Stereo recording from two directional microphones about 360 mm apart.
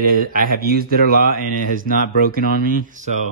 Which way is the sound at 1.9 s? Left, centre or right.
Left.